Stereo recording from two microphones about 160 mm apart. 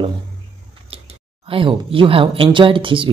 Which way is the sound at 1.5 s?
35° right (ahead or behind).